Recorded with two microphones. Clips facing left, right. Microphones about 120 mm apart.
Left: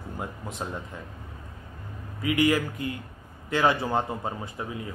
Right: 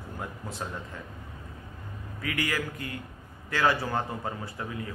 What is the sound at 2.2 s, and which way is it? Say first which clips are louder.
A man's voice: left 8 dB; 20° left (ahead or behind).